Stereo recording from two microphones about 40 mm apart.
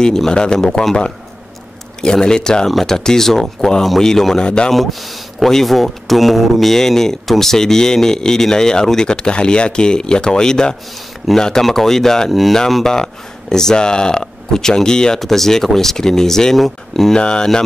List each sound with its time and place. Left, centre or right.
0.0 s speech: centre
0.3 s speech: left
0.6 s speech: centre
2.7 s speech: centre
4.4 s speech: left
4.7 s speech: centre
12.3 s speech: centre
12.8 s speech: centre
15.1 s speech: centre
17.1 s speech: left